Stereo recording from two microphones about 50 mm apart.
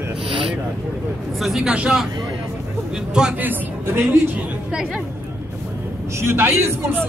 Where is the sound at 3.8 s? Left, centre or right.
Right.